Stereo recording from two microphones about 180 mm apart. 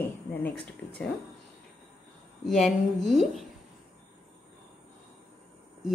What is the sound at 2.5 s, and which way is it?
Speech, centre (ahead or behind).